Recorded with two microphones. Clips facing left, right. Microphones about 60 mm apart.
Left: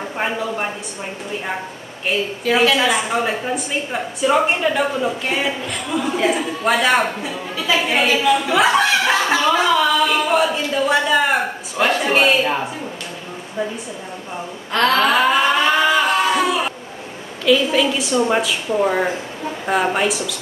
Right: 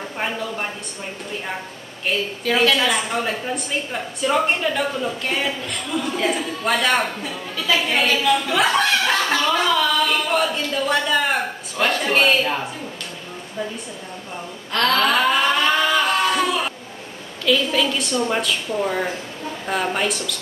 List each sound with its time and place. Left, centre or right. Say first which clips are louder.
0.2 s speech: left 4 dB; centre
2.1 s speech: left 3 dB; centre
14.7 s a sound: left 3 dB; centre
17.5 s speech: left 4 dB; centre
18.8 s a sound: left 8 dB; centre
19.7 s speech: left 4 dB; centre